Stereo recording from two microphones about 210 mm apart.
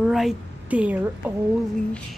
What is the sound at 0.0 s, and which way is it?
A woman's voice, centre (ahead or behind).